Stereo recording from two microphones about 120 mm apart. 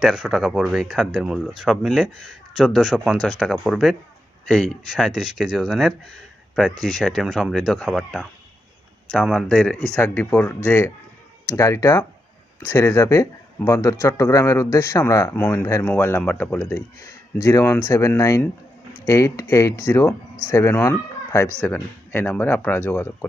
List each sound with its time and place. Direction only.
0.0 s speech: 5° right (ahead or behind); by 23.1 s 20° left (ahead or behind)